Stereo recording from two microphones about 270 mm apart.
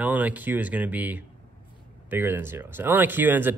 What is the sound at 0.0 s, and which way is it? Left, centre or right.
Speech, centre.